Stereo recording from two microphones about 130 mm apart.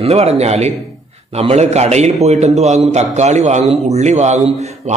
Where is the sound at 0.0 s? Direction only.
50° right (ahead or behind).